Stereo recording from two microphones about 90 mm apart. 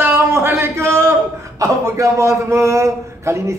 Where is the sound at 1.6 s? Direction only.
35° right (ahead or behind).